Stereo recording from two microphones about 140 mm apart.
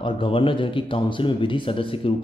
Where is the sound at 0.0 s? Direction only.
40° left (ahead or behind).